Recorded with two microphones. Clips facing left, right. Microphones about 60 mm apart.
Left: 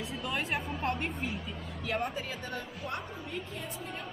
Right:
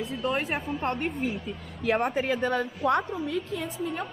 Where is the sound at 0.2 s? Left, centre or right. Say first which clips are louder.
Right 7 dB; right.